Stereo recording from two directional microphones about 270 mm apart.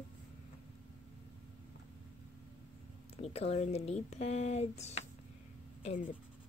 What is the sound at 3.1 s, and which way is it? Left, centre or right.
Speech, left.